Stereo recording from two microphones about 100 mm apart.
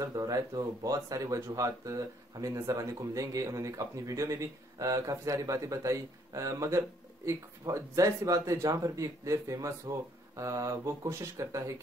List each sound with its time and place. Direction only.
0.0 s speech: 35° right (ahead or behind)